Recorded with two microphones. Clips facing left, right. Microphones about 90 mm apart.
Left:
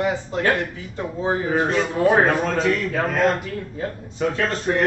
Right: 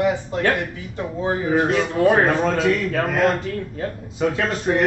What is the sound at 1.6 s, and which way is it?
Speech, 5° right (ahead or behind).